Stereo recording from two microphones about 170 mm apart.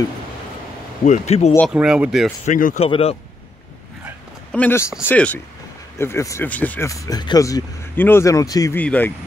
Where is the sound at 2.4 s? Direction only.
50° left (ahead or behind).